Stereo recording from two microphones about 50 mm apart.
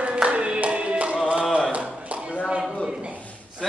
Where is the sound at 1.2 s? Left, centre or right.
Centre.